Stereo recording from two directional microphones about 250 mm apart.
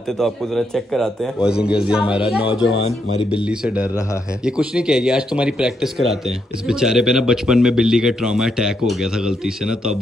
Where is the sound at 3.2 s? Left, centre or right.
Centre.